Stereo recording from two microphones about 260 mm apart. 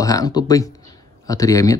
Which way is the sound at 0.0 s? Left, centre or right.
Centre.